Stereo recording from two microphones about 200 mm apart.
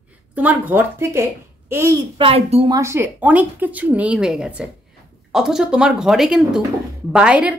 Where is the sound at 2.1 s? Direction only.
30° right (ahead or behind).